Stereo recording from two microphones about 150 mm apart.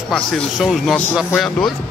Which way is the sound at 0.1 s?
Centre (ahead or behind).